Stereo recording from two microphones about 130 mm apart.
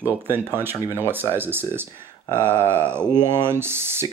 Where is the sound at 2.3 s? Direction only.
20° right (ahead or behind).